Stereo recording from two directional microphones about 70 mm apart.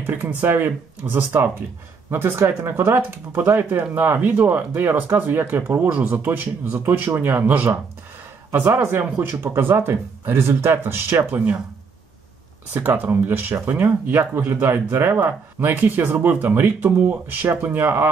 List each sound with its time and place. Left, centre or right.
0.0 s speech: right
4.3 s speech: centre
4.6 s speech: right
12.7 s speech: right